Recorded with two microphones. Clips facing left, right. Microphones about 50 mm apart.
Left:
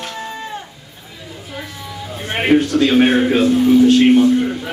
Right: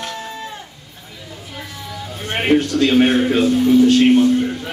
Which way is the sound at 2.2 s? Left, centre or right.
Centre.